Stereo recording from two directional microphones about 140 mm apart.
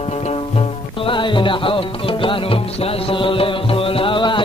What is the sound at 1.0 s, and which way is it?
Music, 35° left (ahead or behind).